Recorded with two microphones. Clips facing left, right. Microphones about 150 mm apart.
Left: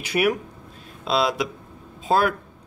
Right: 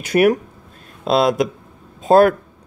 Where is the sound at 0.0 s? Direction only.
45° right (ahead or behind).